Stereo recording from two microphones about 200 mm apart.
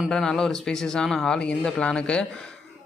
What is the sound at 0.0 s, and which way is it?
Speech, centre (ahead or behind).